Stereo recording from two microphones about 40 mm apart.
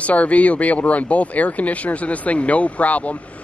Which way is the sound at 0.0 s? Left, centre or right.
Left.